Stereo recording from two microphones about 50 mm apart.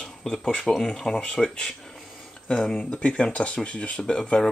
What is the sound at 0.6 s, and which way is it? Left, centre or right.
Speech, centre.